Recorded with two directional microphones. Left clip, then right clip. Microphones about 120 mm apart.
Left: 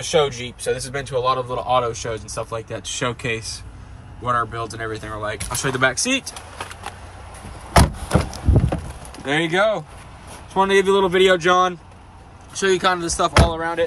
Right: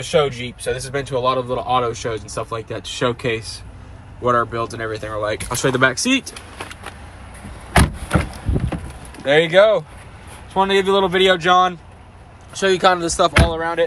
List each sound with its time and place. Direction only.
0.0 s speech: 35° left (ahead or behind)
0.7 s speech: 5° left (ahead or behind)
1.2 s speech: 25° left (ahead or behind)
5.8 s speech: centre (ahead or behind)
8.1 s a sound: 45° left (ahead or behind)
9.2 s speech: 20° left (ahead or behind)
12.5 s speech: 5° left (ahead or behind)
13.5 s speech: 35° left (ahead or behind)